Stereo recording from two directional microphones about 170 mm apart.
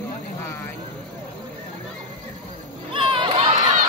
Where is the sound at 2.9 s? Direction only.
30° right (ahead or behind).